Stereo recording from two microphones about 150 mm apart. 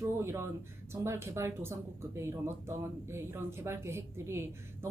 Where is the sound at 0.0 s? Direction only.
15° right (ahead or behind).